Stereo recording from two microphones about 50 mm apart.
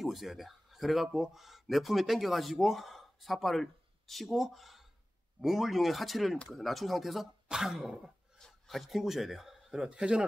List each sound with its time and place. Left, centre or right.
0.0 s speech: centre
7.4 s speech: centre
8.4 s speech: centre
9.8 s a man's voice: centre